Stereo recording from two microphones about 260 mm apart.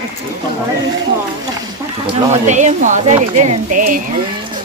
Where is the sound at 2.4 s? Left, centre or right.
Right.